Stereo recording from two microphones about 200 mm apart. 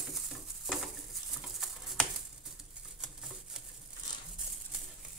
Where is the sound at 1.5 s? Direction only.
Centre (ahead or behind).